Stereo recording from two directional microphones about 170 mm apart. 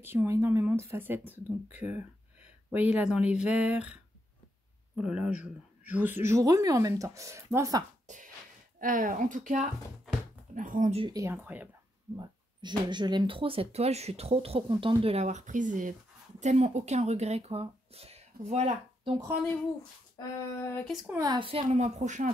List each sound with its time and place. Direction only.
0.0 s a woman's voice: 15° right (ahead or behind)
8.1 s a sound: 45° right (ahead or behind)
8.7 s a woman's voice: 55° right (ahead or behind)
11.1 s speech: 20° right (ahead or behind)
11.3 s a woman's voice: 10° right (ahead or behind)
12.2 s speech: 25° right (ahead or behind)
20.2 s female singing: 15° left (ahead or behind)
21.2 s speech: 25° right (ahead or behind); by 22.3 s 45° right (ahead or behind)